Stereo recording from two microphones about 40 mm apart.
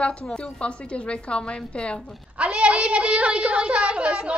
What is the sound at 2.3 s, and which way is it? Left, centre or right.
A woman's voice, right.